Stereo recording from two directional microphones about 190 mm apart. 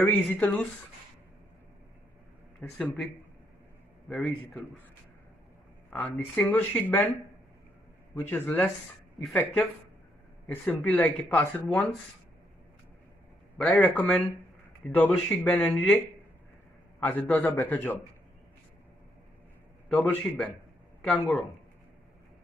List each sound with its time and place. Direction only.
0.1 s speech: 10° left (ahead or behind)
2.6 s speech: 5° left (ahead or behind)
4.1 s a man's voice: 5° left (ahead or behind)
5.9 s speech: 5° left (ahead or behind)
8.1 s speech: 10° left (ahead or behind)
13.6 s a man's voice: 5° left (ahead or behind)
17.0 s speech: 10° left (ahead or behind)
20.0 s a man's voice: 5° left (ahead or behind)